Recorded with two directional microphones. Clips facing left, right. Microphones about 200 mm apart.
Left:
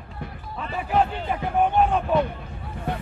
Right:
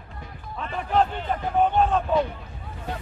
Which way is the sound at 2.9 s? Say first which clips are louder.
Left 4 dB; 55° left (ahead or behind).